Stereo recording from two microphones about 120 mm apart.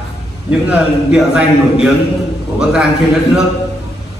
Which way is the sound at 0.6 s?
10° right (ahead or behind).